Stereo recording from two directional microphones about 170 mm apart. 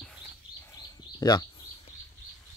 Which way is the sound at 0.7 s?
20° left (ahead or behind).